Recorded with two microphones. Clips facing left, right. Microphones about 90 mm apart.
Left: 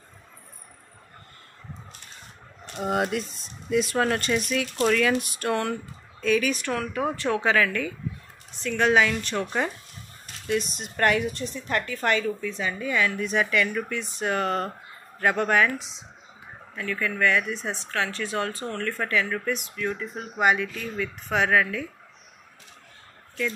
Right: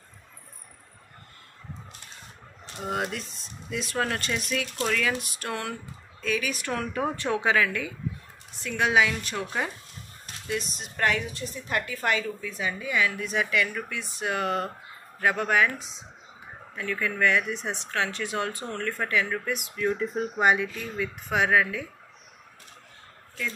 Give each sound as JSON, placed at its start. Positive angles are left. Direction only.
{"t": 2.8, "sound": "a woman's voice", "side_deg": 5}
{"t": 6.7, "sound": "a woman's voice", "side_deg": -25}
{"t": 16.9, "sound": "speech", "side_deg": -20}
{"t": 19.8, "sound": "speech", "side_deg": -30}
{"t": 20.7, "sound": "speech", "side_deg": -15}